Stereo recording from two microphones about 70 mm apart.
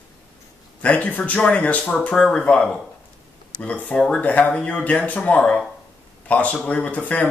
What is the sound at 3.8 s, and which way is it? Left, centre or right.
Speech, centre.